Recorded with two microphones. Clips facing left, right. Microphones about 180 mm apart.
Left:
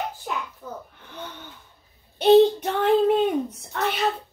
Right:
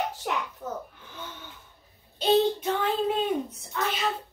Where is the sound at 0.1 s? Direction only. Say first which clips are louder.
Right 1 dB; 80° right.